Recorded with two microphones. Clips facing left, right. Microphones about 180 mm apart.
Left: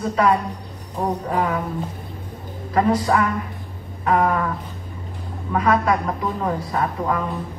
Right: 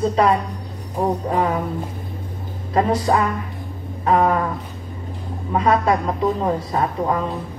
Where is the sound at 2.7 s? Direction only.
25° right (ahead or behind).